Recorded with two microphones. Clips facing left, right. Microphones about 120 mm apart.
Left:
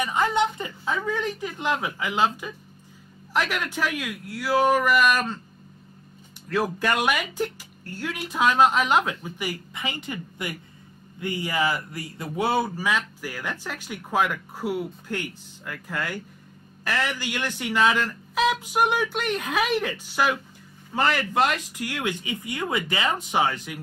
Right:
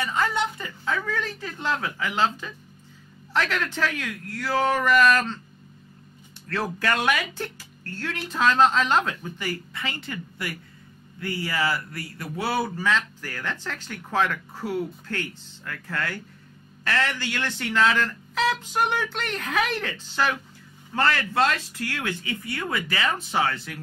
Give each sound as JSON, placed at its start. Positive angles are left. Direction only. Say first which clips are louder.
{"t": 0.0, "sound": "speech", "louder": "left 3 dB", "side_deg": 15}
{"t": 6.5, "sound": "speech", "louder": "left 2 dB", "side_deg": 15}